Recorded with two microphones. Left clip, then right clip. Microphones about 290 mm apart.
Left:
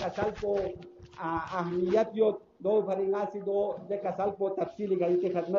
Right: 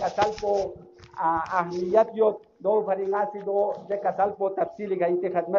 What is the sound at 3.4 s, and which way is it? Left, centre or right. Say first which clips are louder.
Speech: right 5 dB; right.